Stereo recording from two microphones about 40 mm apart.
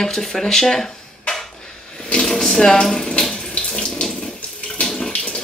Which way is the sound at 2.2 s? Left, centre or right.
Centre.